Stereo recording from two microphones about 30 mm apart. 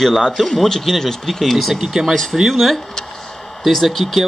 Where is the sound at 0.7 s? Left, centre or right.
Centre.